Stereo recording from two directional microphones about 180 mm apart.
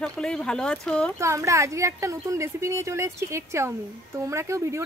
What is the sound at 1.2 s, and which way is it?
Speech, 15° right (ahead or behind).